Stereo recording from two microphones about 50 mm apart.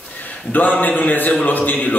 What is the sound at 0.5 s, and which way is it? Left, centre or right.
A man's voice, left.